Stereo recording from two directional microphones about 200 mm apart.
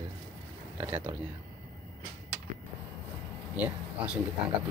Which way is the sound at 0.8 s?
10° right (ahead or behind).